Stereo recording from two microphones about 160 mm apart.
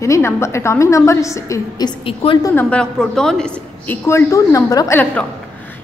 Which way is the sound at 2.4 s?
10° left (ahead or behind).